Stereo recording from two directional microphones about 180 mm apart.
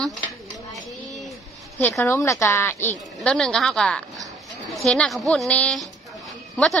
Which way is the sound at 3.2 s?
5° left (ahead or behind).